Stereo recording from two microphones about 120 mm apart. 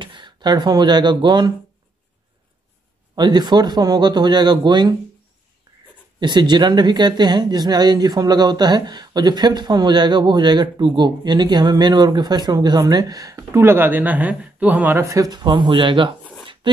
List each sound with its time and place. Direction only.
0.0 s speech: 40° right (ahead or behind)
3.2 s speech: 35° right (ahead or behind)
6.1 s speech: 40° right (ahead or behind)
16.6 s a sound: 40° right (ahead or behind)